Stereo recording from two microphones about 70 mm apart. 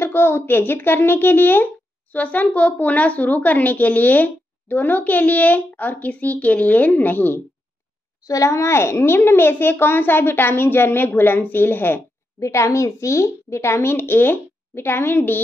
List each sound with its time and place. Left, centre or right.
0.0 s a woman's voice: left
8.2 s a child's voice: left
12.4 s a woman's voice: left